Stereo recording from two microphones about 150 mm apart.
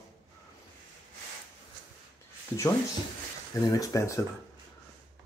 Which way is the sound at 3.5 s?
20° left (ahead or behind).